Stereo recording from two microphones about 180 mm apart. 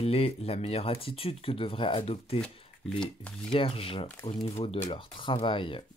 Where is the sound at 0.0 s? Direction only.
35° left (ahead or behind).